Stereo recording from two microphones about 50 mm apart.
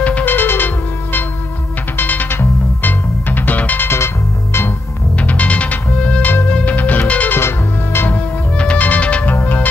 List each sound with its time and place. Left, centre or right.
0.0 s music: left
0.3 s music: left
3.8 s music: left
5.1 s music: left
7.3 s music: left
8.5 s music: left